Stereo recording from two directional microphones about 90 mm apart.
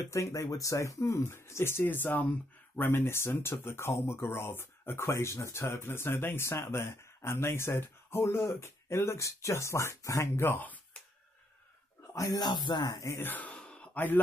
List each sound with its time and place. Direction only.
0.1 s speech: 35° left (ahead or behind); by 11.0 s 20° left (ahead or behind)
12.1 s speech: 45° left (ahead or behind)
13.2 s gasp: 20° left (ahead or behind)
13.9 s speech: 20° left (ahead or behind)